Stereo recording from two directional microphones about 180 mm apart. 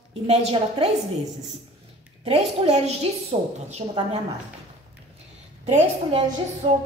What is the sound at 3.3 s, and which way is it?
Speech, 30° right (ahead or behind).